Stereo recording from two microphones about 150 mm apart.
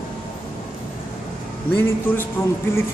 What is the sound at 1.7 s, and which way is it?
Speech, 15° left (ahead or behind).